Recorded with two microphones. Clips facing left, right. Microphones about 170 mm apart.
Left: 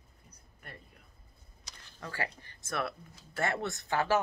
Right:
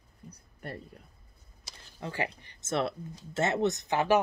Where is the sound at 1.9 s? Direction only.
20° right (ahead or behind).